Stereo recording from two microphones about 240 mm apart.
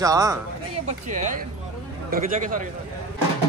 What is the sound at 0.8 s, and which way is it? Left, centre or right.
Speech, right.